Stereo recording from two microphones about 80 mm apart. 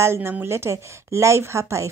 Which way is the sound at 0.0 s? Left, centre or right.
Right.